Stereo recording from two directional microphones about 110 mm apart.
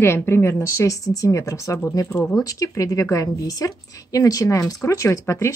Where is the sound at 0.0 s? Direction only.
20° left (ahead or behind).